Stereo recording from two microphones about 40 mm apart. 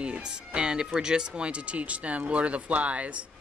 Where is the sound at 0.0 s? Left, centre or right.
Right.